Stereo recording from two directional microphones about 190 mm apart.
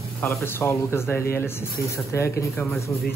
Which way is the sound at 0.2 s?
15° left (ahead or behind).